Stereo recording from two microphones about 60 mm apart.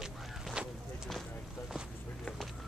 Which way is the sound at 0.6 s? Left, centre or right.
Centre.